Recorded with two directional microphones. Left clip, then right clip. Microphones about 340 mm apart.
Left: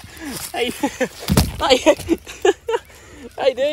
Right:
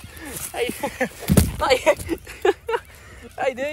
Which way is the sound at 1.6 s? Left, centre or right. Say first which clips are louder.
Left 4 dB; centre.